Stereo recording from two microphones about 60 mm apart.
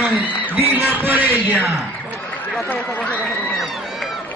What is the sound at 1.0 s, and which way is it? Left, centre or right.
Speech, right.